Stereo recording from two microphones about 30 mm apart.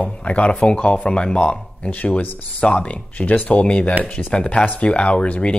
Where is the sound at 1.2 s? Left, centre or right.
Left.